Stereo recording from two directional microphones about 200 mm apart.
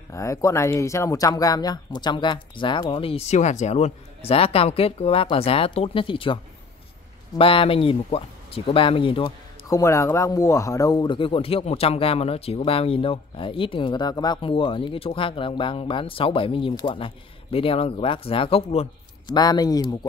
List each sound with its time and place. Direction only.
0.1 s speech: 15° left (ahead or behind)